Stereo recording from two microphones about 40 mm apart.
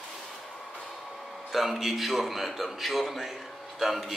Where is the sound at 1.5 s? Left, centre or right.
Centre.